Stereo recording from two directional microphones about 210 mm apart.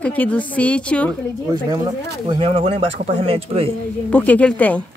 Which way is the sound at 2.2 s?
25° right (ahead or behind).